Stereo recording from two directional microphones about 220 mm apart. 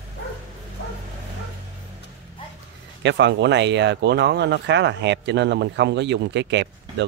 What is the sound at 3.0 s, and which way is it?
Speech, 50° right (ahead or behind).